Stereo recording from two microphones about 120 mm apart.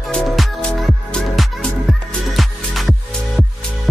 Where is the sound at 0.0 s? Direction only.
Centre (ahead or behind).